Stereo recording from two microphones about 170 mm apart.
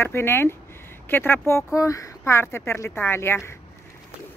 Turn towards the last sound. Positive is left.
turn(degrees=15)  # may be behind; listen again after turning